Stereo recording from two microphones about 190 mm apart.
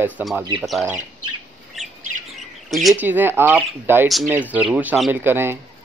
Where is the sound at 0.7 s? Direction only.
5° right (ahead or behind).